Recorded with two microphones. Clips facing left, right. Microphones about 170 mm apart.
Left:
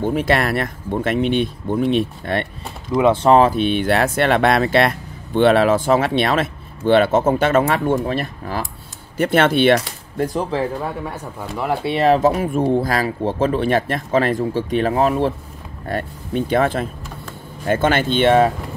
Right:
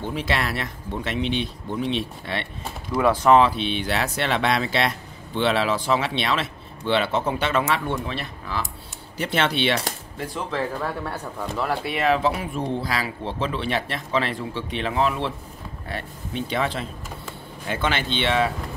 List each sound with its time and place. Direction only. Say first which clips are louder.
0.0 s speech: left 8 dB; 50° left (ahead or behind)
2.9 s speech: left 4 dB; 20° left (ahead or behind); by 10.4 s 45° left (ahead or behind)
11.5 s speech: left 4 dB; 15° left (ahead or behind)
11.8 s speech: left 8 dB; 35° left (ahead or behind)